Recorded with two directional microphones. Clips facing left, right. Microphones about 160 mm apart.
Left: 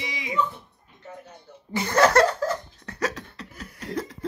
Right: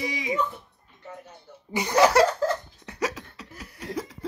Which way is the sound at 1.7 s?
15° right (ahead or behind).